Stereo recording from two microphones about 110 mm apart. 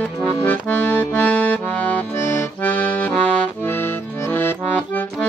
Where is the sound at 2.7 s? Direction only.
10° left (ahead or behind).